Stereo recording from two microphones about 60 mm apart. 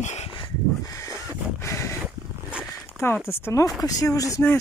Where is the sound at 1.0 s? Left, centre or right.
Left.